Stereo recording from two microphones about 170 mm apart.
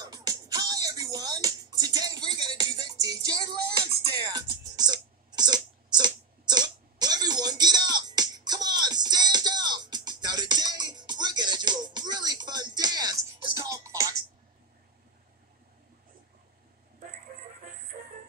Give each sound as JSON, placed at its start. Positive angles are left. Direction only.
{"t": 0.0, "sound": "music", "side_deg": -20}